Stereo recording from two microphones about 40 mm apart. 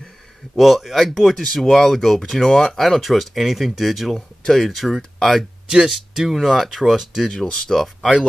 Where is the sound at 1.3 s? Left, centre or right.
Centre.